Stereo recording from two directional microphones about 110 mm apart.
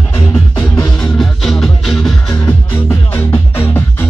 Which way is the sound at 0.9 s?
5° left (ahead or behind).